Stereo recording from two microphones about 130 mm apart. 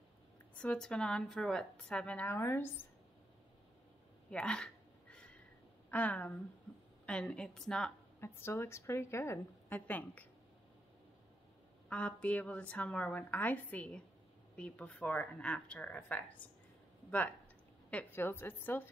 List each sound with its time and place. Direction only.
0.6 s speech: 5° left (ahead or behind)
4.3 s a sound: 5° left (ahead or behind)
5.9 s a woman's voice: 10° left (ahead or behind)
8.2 s a woman's voice: 20° left (ahead or behind)
11.9 s speech: 10° left (ahead or behind)
17.8 s speech: 15° left (ahead or behind)